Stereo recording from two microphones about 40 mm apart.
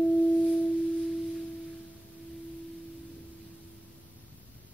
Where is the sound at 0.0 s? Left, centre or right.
Centre.